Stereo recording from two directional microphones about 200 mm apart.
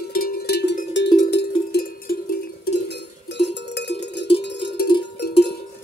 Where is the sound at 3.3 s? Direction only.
60° left (ahead or behind).